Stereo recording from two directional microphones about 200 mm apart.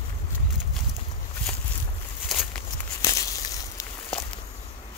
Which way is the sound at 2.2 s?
Centre (ahead or behind).